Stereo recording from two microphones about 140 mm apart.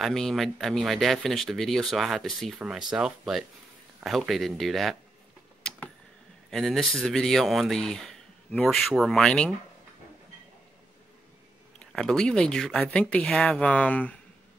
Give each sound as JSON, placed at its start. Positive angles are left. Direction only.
{"t": 0.0, "sound": "speech", "side_deg": 0}
{"t": 5.6, "sound": "tick-tock", "side_deg": 5}
{"t": 6.5, "sound": "speech", "side_deg": 5}
{"t": 11.8, "sound": "speech", "side_deg": 5}